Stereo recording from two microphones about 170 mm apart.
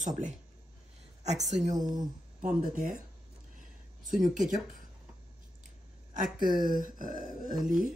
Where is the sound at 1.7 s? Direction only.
25° right (ahead or behind).